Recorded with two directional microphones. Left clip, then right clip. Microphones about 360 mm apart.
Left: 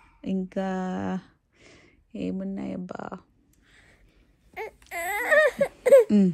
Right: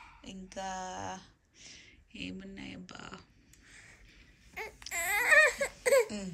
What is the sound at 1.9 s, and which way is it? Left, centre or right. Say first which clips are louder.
Speech: left 11 dB; centre.